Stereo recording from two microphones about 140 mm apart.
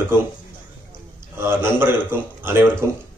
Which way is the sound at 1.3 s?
15° right (ahead or behind).